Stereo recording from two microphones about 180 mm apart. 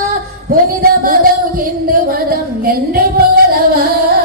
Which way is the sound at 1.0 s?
50° right (ahead or behind).